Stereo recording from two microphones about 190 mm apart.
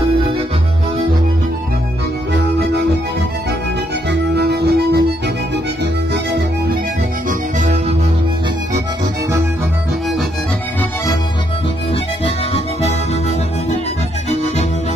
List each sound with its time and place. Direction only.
4.1 s music: 60° right (ahead or behind)
12.5 s music: 35° left (ahead or behind)